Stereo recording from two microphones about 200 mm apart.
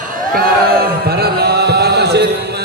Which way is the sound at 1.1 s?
50° right (ahead or behind).